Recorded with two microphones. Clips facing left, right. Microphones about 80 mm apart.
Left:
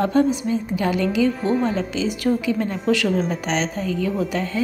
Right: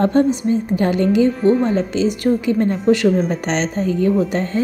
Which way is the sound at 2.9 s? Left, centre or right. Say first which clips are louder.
Right 5 dB; right.